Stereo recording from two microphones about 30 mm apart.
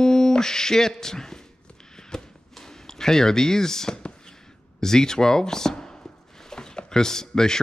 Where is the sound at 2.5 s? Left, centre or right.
Centre.